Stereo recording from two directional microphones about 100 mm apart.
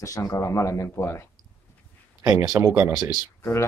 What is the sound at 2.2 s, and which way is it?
Speech, 35° right (ahead or behind).